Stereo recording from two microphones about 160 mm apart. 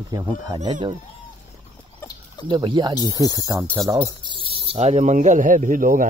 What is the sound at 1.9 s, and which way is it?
Chicken, 25° left (ahead or behind).